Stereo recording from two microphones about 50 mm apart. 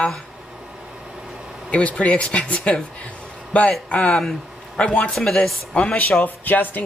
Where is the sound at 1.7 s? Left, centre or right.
Left.